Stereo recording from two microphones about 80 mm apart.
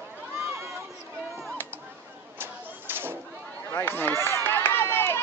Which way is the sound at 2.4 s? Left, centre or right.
Right.